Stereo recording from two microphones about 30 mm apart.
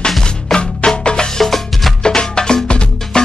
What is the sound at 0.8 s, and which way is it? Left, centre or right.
Music, left.